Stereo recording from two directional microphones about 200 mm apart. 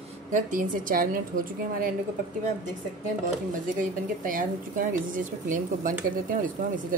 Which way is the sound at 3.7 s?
40° right (ahead or behind).